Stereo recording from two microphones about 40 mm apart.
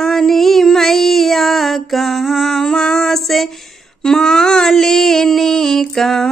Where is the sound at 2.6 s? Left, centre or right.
Centre.